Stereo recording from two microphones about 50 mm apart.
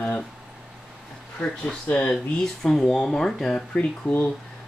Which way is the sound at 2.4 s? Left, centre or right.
Centre.